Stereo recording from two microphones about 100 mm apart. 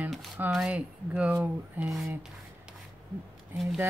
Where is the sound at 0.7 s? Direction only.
10° right (ahead or behind).